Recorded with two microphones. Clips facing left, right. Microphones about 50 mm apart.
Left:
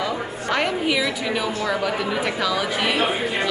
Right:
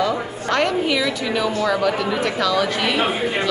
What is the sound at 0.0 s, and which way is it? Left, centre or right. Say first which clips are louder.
A woman's voice: right 4 dB; centre.